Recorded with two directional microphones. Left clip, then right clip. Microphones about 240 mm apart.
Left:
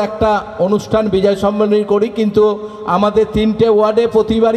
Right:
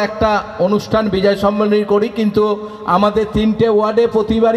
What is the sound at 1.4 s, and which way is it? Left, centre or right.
A man's voice, left.